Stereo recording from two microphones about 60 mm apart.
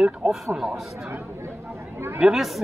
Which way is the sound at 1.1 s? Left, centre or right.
Right.